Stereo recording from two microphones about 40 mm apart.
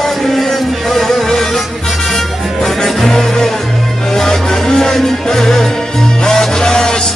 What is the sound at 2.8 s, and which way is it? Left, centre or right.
Music, centre.